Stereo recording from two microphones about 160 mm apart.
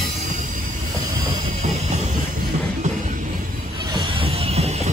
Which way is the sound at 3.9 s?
35° right (ahead or behind).